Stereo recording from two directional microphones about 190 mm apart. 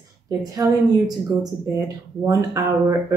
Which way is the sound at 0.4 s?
20° right (ahead or behind).